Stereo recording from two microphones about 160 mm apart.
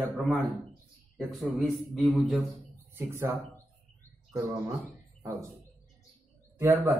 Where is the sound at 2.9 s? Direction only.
15° right (ahead or behind).